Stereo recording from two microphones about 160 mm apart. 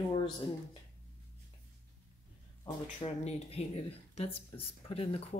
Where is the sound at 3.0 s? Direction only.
40° left (ahead or behind).